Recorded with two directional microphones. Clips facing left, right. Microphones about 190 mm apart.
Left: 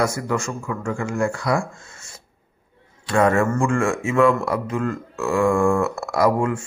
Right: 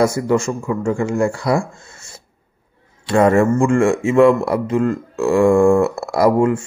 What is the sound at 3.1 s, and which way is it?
A man's voice, 30° right (ahead or behind).